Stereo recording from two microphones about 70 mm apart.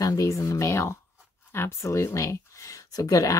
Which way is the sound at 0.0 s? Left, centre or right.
Left.